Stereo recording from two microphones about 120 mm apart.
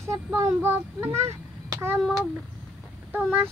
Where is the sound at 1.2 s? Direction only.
20° right (ahead or behind).